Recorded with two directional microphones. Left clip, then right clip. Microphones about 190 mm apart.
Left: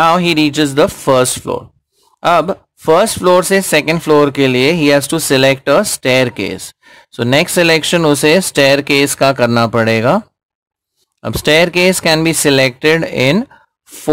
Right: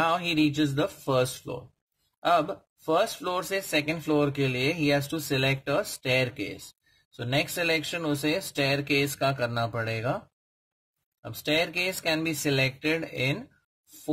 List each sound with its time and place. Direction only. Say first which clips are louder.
0.0 s speech: left 14 dB; 45° left (ahead or behind)
11.2 s speech: left 16 dB; 45° left (ahead or behind)